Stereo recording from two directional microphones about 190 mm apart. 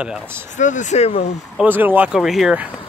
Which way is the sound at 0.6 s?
40° left (ahead or behind).